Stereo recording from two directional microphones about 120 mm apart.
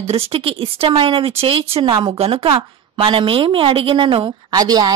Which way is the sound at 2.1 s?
55° right (ahead or behind).